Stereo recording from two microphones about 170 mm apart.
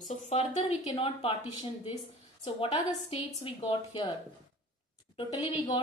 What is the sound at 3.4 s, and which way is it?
Speech, 30° left (ahead or behind).